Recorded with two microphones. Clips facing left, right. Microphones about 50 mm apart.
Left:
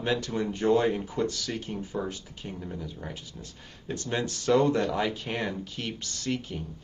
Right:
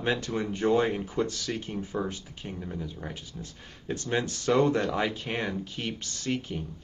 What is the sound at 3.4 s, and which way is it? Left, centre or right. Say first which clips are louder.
Speech: right 2 dB; right.